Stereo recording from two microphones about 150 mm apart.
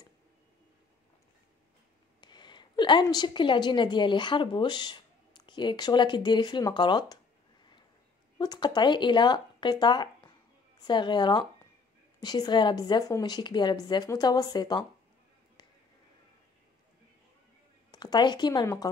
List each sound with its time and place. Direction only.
2.1 s a woman's voice: 30° left (ahead or behind)
8.4 s a woman's voice: 30° left (ahead or behind)
17.9 s a woman's voice: 30° left (ahead or behind)